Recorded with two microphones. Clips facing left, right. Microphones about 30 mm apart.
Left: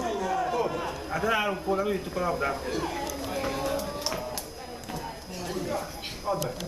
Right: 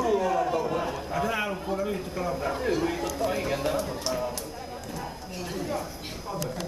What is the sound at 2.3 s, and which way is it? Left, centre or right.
Speech, centre.